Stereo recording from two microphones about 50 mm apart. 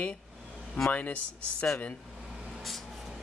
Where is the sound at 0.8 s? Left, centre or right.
Left.